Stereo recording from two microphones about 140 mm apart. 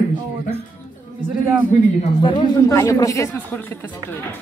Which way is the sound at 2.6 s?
20° left (ahead or behind).